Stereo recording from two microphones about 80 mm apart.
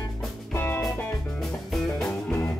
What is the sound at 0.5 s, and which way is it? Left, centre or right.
Music, left.